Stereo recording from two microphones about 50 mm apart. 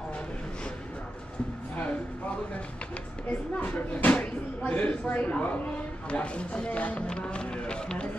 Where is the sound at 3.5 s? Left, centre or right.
Left.